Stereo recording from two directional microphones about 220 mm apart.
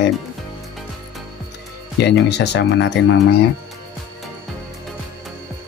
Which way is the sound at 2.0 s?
50° left (ahead or behind).